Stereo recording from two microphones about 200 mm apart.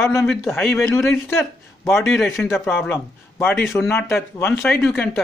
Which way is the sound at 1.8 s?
Centre (ahead or behind).